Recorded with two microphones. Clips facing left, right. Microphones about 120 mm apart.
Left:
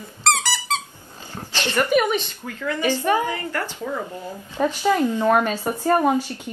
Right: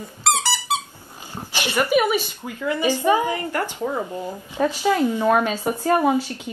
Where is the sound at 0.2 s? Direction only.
15° right (ahead or behind).